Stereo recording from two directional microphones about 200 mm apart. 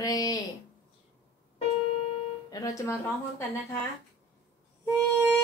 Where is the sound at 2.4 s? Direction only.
15° left (ahead or behind).